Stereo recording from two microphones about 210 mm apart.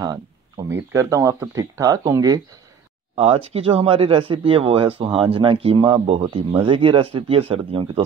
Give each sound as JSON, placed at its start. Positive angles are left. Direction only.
{"t": 0.0, "sound": "speech", "side_deg": -15}
{"t": 3.2, "sound": "speech", "side_deg": -30}